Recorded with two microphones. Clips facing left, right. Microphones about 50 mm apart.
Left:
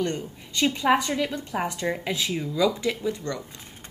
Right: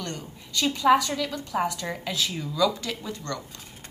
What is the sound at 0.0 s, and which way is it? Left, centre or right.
A woman's voice, left.